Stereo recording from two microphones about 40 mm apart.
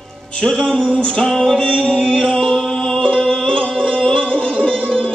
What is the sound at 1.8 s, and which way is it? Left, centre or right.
Music, centre.